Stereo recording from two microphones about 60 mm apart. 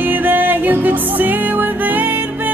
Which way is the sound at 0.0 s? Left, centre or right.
Right.